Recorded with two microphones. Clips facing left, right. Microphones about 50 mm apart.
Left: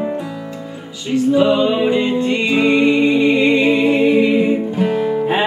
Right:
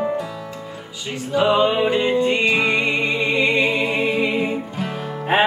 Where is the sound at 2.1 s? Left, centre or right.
Right.